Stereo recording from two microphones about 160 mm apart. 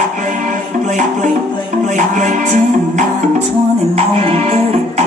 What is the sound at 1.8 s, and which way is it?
Music, 50° right (ahead or behind).